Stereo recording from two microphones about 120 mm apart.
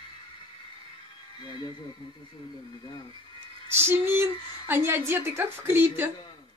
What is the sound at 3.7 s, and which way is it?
Female singing, 20° right (ahead or behind).